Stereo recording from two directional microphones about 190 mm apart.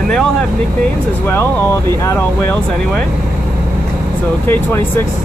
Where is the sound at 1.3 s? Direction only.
10° left (ahead or behind).